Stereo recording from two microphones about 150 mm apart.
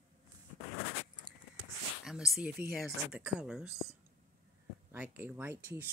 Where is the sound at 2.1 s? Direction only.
5° right (ahead or behind).